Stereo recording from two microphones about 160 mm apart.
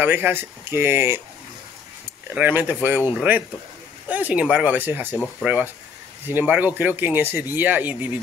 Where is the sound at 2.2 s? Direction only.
10° right (ahead or behind).